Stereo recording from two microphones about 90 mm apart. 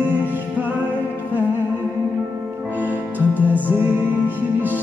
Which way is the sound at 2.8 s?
20° right (ahead or behind).